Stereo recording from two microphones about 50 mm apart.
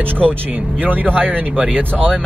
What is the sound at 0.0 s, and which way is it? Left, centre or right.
Speech, right.